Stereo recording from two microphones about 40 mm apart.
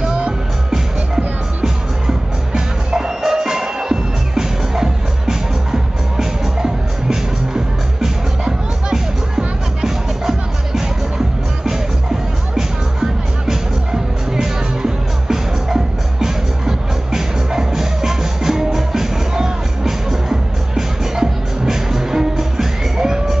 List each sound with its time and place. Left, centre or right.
0.0 s music: right